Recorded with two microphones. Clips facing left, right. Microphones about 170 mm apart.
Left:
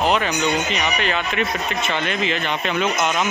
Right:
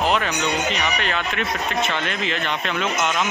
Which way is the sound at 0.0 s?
Centre (ahead or behind).